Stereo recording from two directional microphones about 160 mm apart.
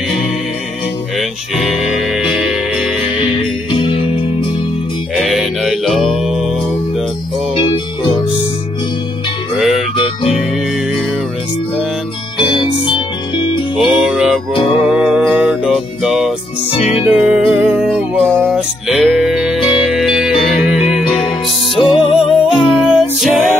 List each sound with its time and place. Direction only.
1.1 s music: centre (ahead or behind)
3.7 s music: 30° left (ahead or behind)
5.1 s music: centre (ahead or behind)
9.6 s music: 5° right (ahead or behind)
12.6 s music: 30° left (ahead or behind)
13.7 s music: 5° right (ahead or behind)
16.7 s music: 40° left (ahead or behind)
17.1 s music: 5° right (ahead or behind)